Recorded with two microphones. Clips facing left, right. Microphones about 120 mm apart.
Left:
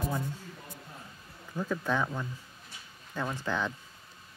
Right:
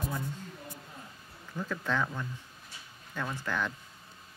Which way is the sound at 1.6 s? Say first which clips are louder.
Left 2 dB; 15° left (ahead or behind).